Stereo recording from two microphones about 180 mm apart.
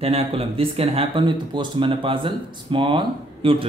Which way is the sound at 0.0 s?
35° right (ahead or behind).